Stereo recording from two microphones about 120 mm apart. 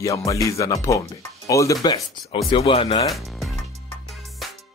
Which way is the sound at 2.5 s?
50° left (ahead or behind).